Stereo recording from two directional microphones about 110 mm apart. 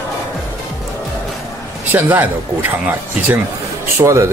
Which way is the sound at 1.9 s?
15° right (ahead or behind).